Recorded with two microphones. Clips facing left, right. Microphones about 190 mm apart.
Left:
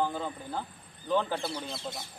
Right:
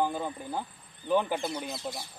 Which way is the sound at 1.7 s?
20° left (ahead or behind).